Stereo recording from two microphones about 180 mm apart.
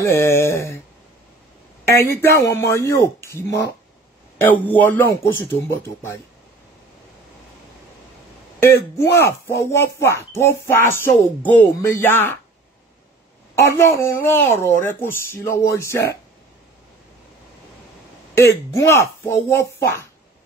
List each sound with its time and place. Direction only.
0.0 s speech: 15° left (ahead or behind)
1.9 s speech: 15° left (ahead or behind)
4.6 s speech: 10° left (ahead or behind)
8.5 s speech: 15° left (ahead or behind)
13.6 s speech: 15° left (ahead or behind)
18.3 s speech: 15° left (ahead or behind)